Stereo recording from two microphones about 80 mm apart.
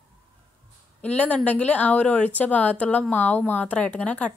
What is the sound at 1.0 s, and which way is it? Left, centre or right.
A woman's voice, centre.